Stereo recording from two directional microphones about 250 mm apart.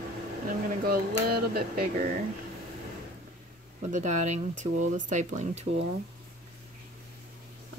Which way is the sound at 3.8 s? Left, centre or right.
Right.